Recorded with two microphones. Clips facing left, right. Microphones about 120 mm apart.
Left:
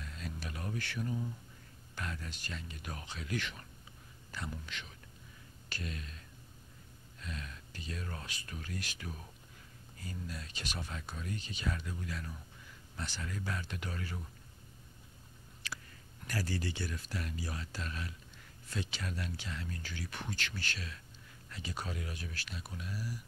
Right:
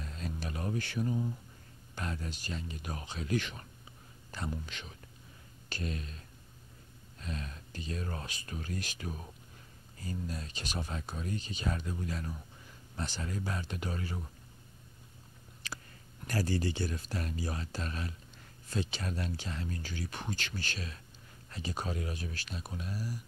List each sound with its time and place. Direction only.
0.0 s speech: 35° right (ahead or behind)
7.2 s speech: 35° right (ahead or behind)
16.4 s speech: 30° right (ahead or behind)